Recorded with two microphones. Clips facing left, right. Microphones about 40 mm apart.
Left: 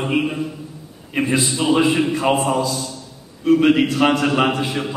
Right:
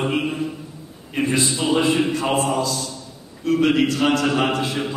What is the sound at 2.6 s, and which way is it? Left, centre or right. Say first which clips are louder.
Speech: left 2 dB; centre.